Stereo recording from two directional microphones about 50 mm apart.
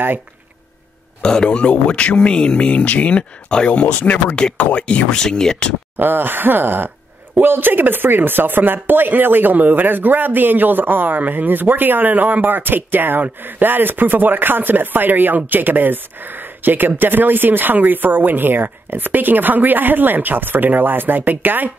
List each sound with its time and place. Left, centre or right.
1.2 s speech: centre
5.9 s speech: right